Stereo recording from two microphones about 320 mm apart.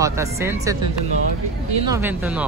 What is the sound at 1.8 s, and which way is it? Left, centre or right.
Speech, centre.